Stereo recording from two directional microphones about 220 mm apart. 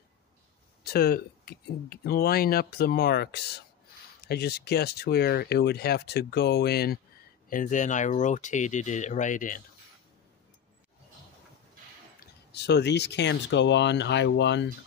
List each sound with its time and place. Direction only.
0.8 s speech: 45° left (ahead or behind)
12.2 s speech: 50° left (ahead or behind)